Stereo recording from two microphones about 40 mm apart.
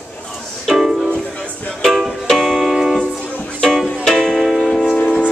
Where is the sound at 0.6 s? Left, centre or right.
Centre.